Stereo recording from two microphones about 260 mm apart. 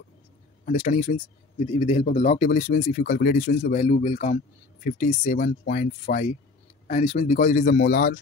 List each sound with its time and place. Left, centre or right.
0.7 s speech: left